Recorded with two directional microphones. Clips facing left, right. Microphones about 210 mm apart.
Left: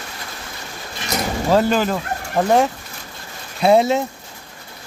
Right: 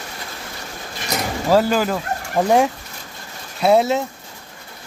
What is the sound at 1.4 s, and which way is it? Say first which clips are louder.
Fowl: even; 5° right (ahead or behind).